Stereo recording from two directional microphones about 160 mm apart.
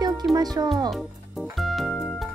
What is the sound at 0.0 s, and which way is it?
Music, 25° right (ahead or behind).